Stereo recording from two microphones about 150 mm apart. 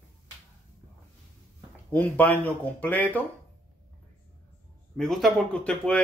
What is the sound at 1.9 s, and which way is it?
A man's voice, 10° left (ahead or behind).